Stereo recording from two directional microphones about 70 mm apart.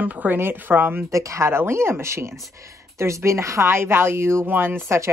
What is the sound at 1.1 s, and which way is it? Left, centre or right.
Speech, right.